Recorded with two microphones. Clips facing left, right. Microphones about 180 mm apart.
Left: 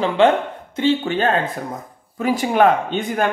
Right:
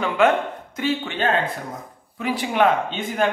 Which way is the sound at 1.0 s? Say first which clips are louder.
Left 3 dB; 40° left (ahead or behind).